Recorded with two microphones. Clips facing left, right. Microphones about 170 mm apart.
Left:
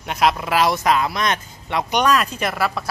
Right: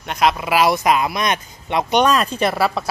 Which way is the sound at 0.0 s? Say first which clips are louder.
Right 1 dB; centre (ahead or behind).